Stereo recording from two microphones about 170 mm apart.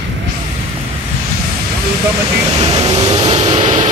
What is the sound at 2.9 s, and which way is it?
Vehicle, 25° right (ahead or behind).